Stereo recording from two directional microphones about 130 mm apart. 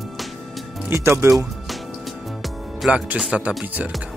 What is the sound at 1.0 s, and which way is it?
Speech, 20° right (ahead or behind).